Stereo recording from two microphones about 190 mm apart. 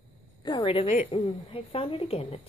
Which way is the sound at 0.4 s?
25° left (ahead or behind).